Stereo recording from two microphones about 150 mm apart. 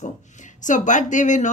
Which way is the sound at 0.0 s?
55° left (ahead or behind).